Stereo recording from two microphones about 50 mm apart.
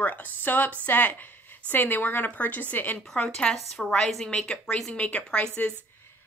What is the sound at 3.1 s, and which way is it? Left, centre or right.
A woman's voice, centre.